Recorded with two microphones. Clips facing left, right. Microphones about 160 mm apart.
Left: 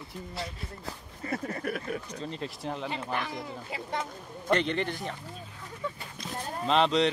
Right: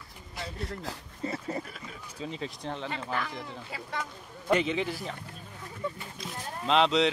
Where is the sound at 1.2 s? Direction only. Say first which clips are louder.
Even; 25° right (ahead or behind).